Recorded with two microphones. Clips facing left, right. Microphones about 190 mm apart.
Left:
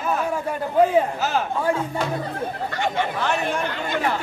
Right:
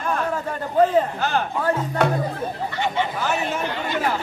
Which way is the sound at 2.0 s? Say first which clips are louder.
Right 5 dB; 65° right (ahead or behind).